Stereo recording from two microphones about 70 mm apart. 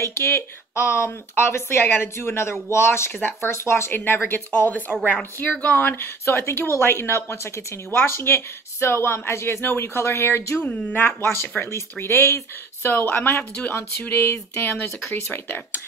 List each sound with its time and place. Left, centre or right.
0.0 s speech: left
10.6 s speech: centre
11.1 s speech: left